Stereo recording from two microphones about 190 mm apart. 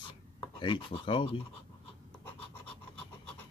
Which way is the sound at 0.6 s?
25° left (ahead or behind).